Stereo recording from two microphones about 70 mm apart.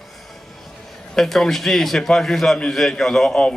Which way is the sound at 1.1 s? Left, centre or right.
Centre.